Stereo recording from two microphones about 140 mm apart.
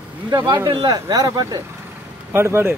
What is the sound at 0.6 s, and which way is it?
Speech, 30° right (ahead or behind).